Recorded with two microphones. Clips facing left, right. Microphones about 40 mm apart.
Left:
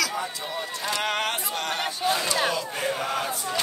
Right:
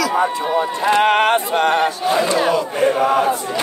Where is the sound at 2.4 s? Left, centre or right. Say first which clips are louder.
Right 10 dB; right.